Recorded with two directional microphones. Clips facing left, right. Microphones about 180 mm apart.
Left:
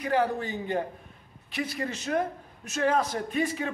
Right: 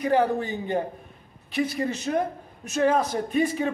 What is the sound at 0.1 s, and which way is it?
Speech, 20° right (ahead or behind).